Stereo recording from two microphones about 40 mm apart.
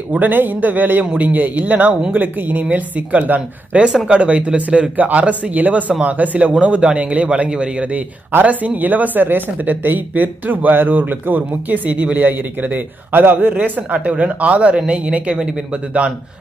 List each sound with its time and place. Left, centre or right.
0.2 s speech: right
6.5 s speech: right
8.5 s speech: right
13.9 s speech: right